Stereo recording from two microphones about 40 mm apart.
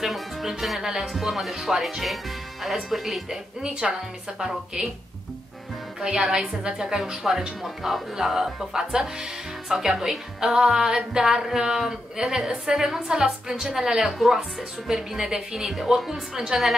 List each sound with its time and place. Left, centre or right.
0.0 s music: centre
1.1 s speech: centre
5.9 s a woman's voice: centre